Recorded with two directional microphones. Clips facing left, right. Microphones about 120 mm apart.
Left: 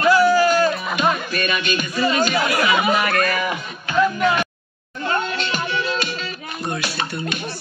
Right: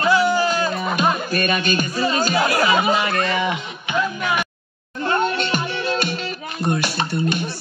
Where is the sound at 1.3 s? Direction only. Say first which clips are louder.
Right 2 dB; 40° right (ahead or behind); by 3.5 s 25° right (ahead or behind).